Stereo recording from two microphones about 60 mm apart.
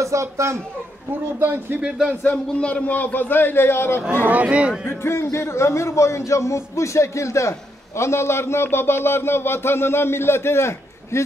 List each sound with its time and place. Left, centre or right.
0.0 s speech: right
1.4 s speech: right
2.5 s a man's voice: centre
2.9 s a man's voice: left
4.3 s speech: right
4.8 s a man's voice: left